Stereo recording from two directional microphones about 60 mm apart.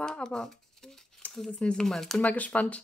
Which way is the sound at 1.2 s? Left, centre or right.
Left.